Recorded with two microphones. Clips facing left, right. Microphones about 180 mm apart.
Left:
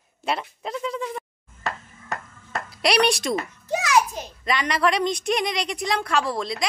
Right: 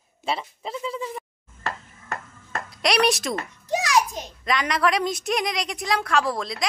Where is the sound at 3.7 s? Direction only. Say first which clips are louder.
Left 1 dB; 15° right (ahead or behind).